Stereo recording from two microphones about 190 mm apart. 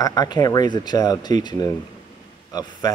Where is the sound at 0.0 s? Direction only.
20° left (ahead or behind).